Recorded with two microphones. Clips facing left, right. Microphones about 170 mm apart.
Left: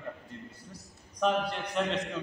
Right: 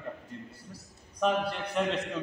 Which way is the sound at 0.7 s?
Centre (ahead or behind).